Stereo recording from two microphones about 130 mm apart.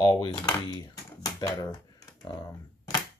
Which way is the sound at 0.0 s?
35° left (ahead or behind).